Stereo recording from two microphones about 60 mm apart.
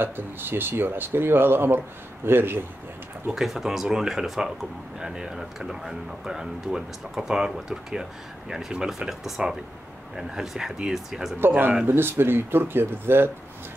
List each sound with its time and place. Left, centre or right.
0.0 s speech: right
3.3 s speech: centre
11.3 s speech: right